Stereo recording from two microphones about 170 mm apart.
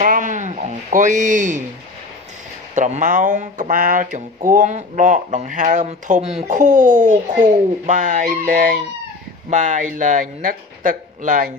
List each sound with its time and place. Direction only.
0.0 s bleat: 50° right (ahead or behind)
2.7 s speech: 45° right (ahead or behind)